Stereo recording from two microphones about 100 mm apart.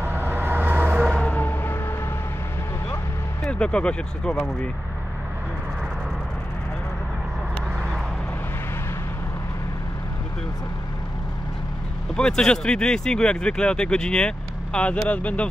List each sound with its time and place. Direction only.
0.0 s vehicle: 20° right (ahead or behind)
1.0 s vehicle: 15° left (ahead or behind)
3.4 s speech: 10° left (ahead or behind)
12.2 s speech: 5° left (ahead or behind)